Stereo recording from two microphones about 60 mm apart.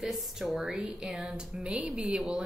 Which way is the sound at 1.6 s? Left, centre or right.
Centre.